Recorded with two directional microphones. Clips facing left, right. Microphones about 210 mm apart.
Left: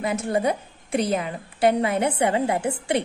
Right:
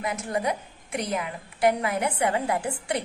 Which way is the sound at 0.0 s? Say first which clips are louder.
Left 5 dB; 30° left (ahead or behind).